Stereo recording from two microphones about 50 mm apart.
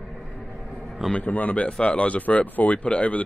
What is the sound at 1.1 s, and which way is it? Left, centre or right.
Speech, left.